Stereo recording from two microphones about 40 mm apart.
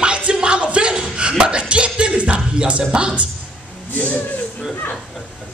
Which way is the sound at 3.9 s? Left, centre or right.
Left.